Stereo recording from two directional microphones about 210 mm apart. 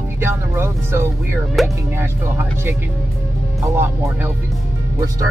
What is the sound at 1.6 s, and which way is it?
Speech, centre (ahead or behind).